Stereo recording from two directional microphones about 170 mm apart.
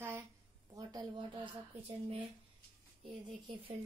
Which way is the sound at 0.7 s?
25° right (ahead or behind).